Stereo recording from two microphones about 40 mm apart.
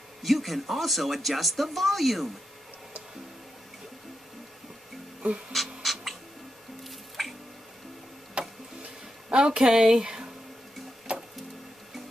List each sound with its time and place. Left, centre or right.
0.2 s speech: centre
5.5 s a sound: centre
6.8 s music: centre
8.4 s a sound: right
9.3 s speech: right
11.1 s music: right